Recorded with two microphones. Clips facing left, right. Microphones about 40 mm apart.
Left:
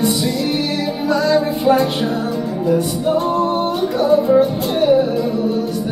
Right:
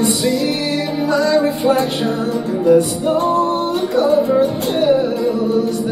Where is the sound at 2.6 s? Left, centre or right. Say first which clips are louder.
Right 4 dB; right.